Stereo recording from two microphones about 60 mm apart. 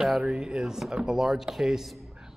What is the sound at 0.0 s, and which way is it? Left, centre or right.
Speech, centre.